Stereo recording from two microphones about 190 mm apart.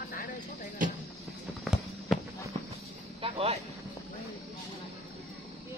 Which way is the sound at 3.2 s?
30° right (ahead or behind).